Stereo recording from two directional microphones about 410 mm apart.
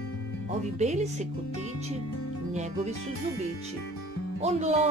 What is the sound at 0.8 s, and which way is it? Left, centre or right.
Speech, centre.